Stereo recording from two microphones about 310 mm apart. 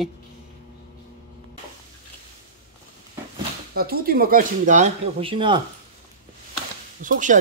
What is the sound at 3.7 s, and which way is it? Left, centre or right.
Speech, right.